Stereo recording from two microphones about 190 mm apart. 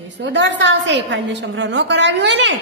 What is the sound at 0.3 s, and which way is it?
A woman's voice, 70° right (ahead or behind).